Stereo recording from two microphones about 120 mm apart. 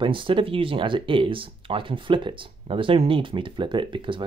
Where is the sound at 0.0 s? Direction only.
45° right (ahead or behind).